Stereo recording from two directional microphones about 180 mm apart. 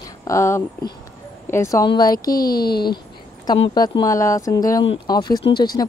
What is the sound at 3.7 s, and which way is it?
Speech, 25° left (ahead or behind).